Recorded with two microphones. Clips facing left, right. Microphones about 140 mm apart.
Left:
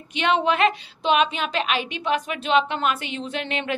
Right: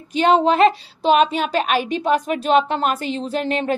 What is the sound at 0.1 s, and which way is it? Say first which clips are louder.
A woman's voice: right 6 dB; 35° right (ahead or behind).